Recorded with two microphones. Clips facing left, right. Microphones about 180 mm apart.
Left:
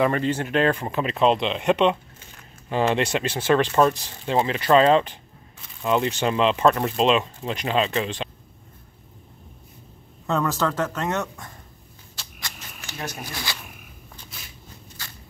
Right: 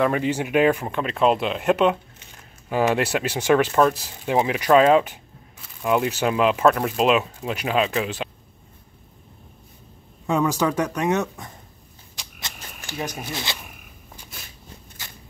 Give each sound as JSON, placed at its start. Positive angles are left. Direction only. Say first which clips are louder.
{"t": 0.0, "sound": "speech", "louder": "even", "side_deg": -10}
{"t": 0.8, "sound": "speech", "louder": "even", "side_deg": 0}
{"t": 10.2, "sound": "speech", "louder": "right 2 dB", "side_deg": -10}
{"t": 12.2, "sound": "a sound", "louder": "right 1 dB", "side_deg": -20}
{"t": 12.9, "sound": "speech", "louder": "right 4 dB", "side_deg": -15}